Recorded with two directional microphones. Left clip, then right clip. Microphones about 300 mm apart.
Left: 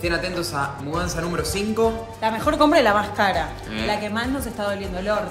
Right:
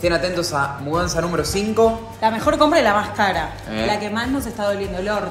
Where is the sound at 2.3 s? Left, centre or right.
Centre.